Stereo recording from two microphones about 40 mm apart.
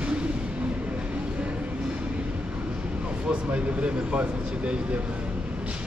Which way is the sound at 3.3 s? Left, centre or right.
Right.